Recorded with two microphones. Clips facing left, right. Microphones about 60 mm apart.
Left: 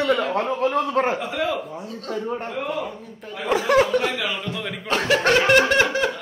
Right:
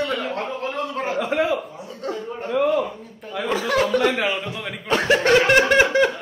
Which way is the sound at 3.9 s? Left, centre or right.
Centre.